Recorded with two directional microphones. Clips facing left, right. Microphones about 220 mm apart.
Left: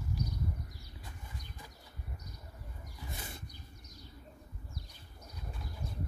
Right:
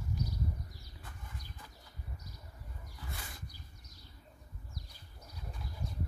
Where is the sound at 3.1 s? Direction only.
25° left (ahead or behind).